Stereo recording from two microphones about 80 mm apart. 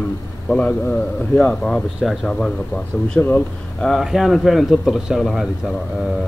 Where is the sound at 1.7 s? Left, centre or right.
Centre.